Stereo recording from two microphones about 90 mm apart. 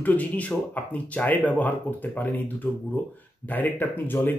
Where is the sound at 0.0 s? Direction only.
20° left (ahead or behind).